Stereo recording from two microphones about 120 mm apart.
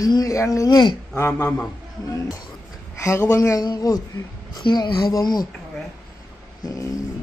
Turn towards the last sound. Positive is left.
turn(degrees=25)  # may be behind; listen again after turning